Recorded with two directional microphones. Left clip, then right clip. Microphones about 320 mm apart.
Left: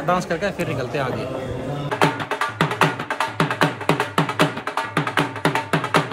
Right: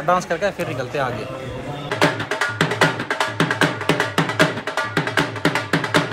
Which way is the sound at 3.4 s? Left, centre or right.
Centre.